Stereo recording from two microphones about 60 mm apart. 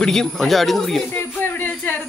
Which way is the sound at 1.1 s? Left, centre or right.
Left.